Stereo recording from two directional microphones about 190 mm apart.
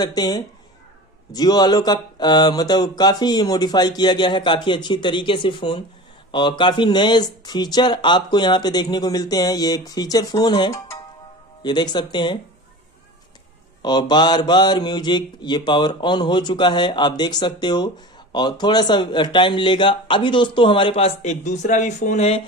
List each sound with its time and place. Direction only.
0.0 s speech: 20° left (ahead or behind)
13.8 s speech: 20° left (ahead or behind)